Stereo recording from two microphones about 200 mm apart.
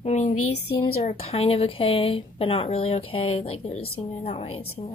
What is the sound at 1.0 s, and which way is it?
A woman's voice, 30° left (ahead or behind).